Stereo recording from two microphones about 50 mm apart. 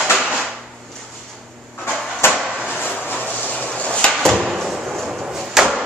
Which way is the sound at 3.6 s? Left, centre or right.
Left.